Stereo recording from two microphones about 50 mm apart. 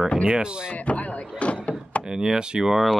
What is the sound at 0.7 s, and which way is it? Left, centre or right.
Speech, left.